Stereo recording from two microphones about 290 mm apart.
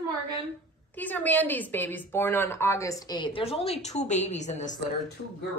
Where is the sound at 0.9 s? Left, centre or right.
Centre; by 4.8 s left.